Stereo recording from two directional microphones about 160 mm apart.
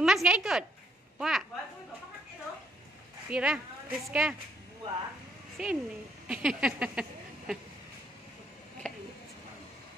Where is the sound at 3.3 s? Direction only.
5° right (ahead or behind).